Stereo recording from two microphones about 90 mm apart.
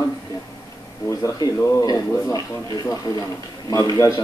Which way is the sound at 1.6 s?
45° left (ahead or behind).